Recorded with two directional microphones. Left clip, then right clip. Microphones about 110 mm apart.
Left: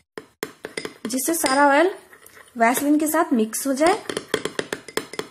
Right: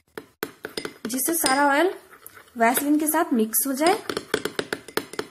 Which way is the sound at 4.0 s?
20° right (ahead or behind).